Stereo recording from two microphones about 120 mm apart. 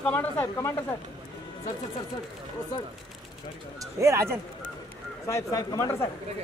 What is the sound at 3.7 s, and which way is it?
Speech, 25° right (ahead or behind).